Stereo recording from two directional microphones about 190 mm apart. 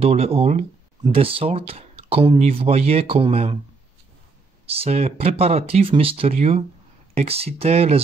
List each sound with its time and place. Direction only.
0.0 s speech: 30° right (ahead or behind)
4.6 s speech: 30° right (ahead or behind)